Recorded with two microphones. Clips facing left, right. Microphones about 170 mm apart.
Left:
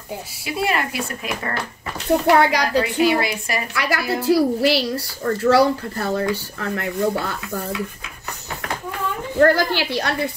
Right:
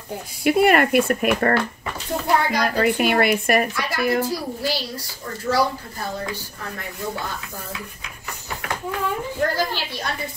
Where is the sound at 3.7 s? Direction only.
75° left (ahead or behind).